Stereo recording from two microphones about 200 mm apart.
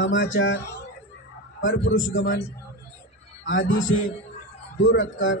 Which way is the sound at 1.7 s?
65° left (ahead or behind).